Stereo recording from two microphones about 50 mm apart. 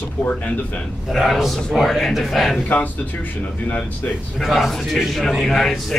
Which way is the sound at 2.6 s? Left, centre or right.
Left.